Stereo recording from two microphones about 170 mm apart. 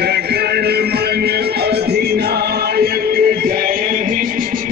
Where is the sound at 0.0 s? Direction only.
70° right (ahead or behind).